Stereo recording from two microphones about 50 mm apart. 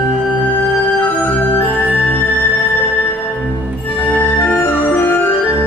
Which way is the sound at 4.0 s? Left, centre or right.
Left.